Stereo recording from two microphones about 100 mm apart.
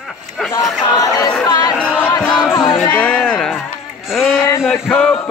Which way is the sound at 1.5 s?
45° left (ahead or behind).